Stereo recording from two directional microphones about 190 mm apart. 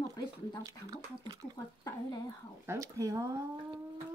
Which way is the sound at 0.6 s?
20° right (ahead or behind).